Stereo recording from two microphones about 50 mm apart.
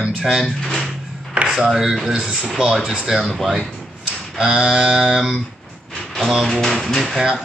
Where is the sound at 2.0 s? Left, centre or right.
Centre.